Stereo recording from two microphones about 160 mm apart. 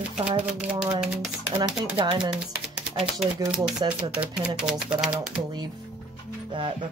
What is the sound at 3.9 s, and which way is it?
Speech, 5° right (ahead or behind).